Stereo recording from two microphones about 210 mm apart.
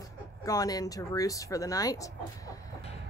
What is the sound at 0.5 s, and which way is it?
Speech, 15° left (ahead or behind).